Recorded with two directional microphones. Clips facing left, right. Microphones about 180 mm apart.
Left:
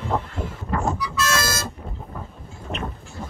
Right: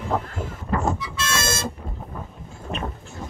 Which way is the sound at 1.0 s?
25° right (ahead or behind).